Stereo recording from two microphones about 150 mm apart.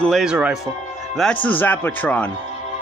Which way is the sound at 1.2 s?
5° left (ahead or behind).